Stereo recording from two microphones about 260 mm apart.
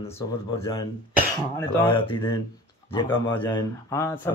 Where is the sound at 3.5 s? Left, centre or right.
Centre.